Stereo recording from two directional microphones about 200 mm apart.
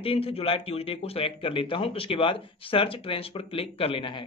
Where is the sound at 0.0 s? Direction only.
25° left (ahead or behind).